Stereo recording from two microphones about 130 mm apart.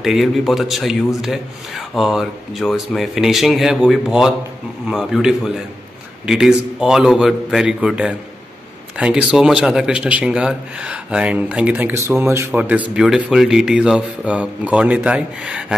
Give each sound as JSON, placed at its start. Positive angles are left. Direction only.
{"t": 0.0, "sound": "a man's voice", "side_deg": 0}